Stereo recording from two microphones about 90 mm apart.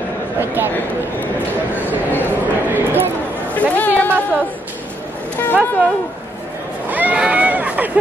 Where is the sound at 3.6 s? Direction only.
20° left (ahead or behind).